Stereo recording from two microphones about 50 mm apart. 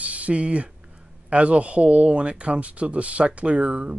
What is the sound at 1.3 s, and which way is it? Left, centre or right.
Speech, right.